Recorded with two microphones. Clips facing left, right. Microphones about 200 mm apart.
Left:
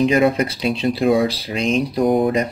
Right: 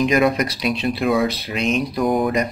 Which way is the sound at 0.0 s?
30° left (ahead or behind).